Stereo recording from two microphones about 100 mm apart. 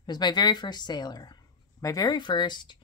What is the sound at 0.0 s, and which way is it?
A woman's voice, 45° left (ahead or behind).